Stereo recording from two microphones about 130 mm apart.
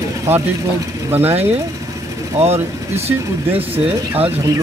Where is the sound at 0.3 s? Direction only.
20° right (ahead or behind).